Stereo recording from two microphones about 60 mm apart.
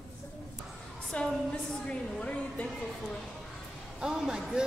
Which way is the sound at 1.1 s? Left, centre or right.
Centre.